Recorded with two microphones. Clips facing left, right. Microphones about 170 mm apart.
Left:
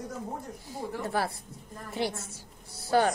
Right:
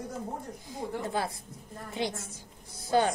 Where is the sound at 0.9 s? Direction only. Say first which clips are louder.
Left 1 dB; 20° right (ahead or behind).